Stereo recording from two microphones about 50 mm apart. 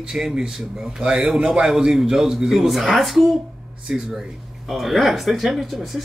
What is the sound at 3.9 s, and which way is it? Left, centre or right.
Speech, centre.